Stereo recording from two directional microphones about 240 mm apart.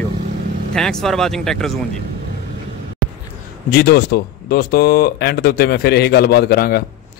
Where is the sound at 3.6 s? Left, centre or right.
Left.